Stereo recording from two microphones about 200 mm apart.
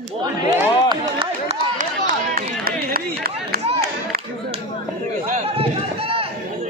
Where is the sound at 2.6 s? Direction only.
50° right (ahead or behind).